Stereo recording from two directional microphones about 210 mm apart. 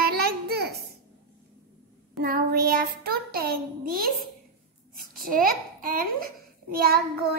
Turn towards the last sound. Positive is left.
turn(degrees=-45)  # may be behind; listen again after turning